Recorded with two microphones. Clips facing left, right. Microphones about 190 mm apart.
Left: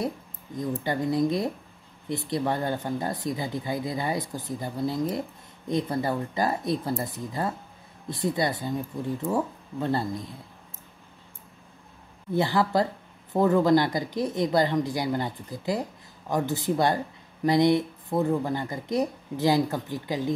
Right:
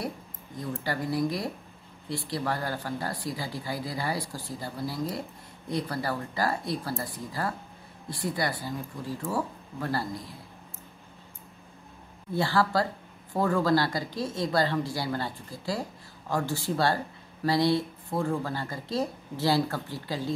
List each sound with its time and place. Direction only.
0.6 s speech: 20° left (ahead or behind)
12.3 s speech: 20° left (ahead or behind)